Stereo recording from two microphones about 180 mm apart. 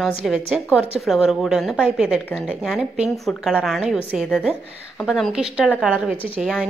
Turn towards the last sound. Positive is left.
turn(degrees=-5)  # may be behind; listen again after turning